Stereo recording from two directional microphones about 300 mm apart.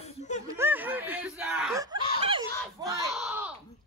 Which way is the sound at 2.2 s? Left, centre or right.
Centre.